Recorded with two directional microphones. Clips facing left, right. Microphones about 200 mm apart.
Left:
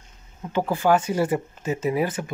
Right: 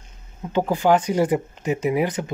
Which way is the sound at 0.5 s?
15° right (ahead or behind).